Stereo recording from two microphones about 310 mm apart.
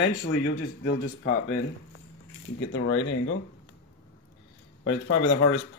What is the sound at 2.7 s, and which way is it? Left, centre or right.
Speech, left.